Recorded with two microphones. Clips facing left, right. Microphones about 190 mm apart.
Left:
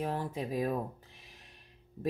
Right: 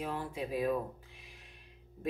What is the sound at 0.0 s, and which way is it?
Speech, 40° left (ahead or behind).